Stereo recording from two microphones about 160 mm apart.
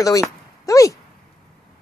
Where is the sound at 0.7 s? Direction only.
20° left (ahead or behind).